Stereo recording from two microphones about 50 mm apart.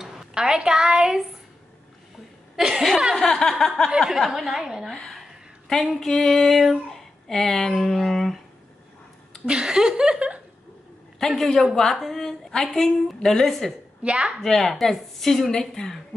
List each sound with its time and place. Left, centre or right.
0.3 s speech: centre
2.5 s speech: centre
3.2 s a sound: centre
3.5 s speech: centre
4.3 s speech: centre
5.7 s a sound: centre
9.5 s speech: centre
11.1 s a man's voice: centre
11.7 s a sound: centre
14.0 s a woman's voice: right
14.4 s speech: centre